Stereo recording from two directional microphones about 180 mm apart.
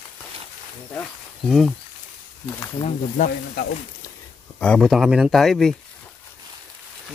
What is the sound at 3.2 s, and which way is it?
Speech, 45° left (ahead or behind).